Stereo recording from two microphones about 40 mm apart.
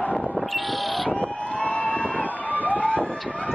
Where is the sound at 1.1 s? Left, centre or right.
Left.